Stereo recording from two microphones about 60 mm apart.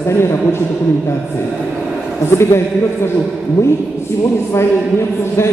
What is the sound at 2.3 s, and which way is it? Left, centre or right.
Speech, left.